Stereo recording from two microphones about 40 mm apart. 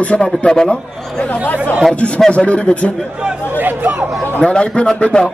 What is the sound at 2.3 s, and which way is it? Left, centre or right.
Speech, left.